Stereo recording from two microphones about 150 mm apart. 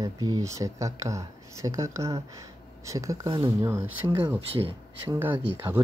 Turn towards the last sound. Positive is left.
turn(degrees=-15)  # may be behind; listen again after turning